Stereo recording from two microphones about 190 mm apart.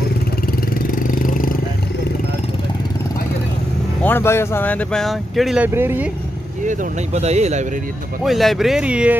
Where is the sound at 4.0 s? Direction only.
10° left (ahead or behind).